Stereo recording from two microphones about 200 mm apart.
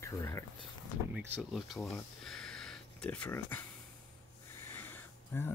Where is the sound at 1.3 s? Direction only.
Centre (ahead or behind).